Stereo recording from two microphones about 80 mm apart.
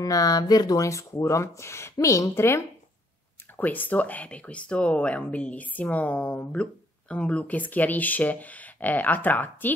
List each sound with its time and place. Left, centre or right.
0.0 s speech: left
3.5 s speech: left